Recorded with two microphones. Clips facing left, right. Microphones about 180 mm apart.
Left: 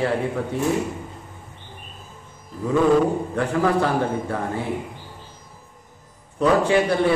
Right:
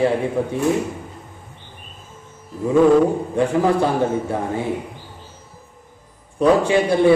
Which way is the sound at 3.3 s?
15° right (ahead or behind).